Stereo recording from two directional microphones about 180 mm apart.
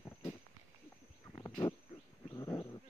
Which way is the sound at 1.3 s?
20° left (ahead or behind).